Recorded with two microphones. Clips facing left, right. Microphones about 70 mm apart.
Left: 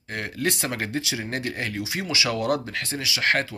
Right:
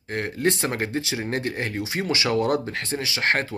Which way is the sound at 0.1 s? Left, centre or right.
Right.